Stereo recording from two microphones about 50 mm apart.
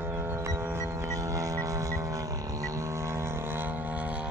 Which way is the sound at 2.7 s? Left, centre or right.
Right.